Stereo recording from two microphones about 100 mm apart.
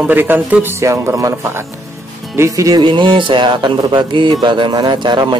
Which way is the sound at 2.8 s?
50° right (ahead or behind).